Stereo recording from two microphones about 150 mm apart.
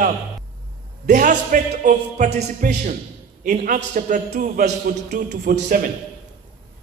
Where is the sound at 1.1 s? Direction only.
60° right (ahead or behind); by 2.7 s 80° right.